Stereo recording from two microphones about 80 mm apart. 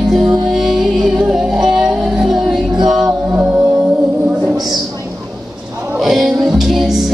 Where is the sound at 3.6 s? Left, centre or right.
Centre.